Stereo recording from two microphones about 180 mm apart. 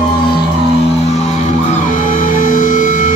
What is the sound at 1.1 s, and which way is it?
Music, 40° left (ahead or behind).